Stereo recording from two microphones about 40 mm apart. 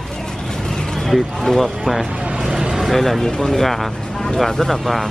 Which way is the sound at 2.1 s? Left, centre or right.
Right.